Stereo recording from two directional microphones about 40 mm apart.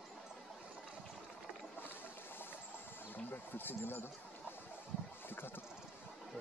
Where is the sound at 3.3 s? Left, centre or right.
Left.